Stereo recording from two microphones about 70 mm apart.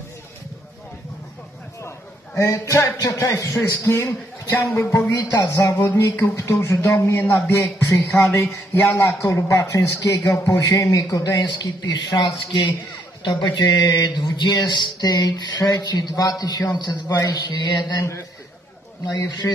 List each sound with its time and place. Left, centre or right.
2.3 s a man's voice: left
5.4 s speech: left
5.8 s a man's voice: left
8.1 s a man's voice: left
8.9 s a man's voice: left
13.5 s speech: left
17.2 s a sound: left
19.1 s a man's voice: left